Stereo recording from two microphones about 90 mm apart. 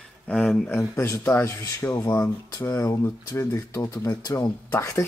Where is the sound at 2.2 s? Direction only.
40° left (ahead or behind).